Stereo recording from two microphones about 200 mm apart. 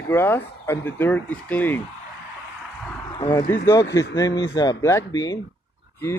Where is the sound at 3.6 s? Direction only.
15° left (ahead or behind).